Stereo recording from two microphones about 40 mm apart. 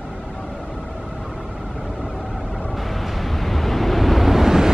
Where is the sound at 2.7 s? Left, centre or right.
Centre.